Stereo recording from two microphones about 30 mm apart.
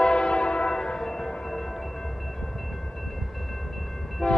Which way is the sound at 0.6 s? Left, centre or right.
Left.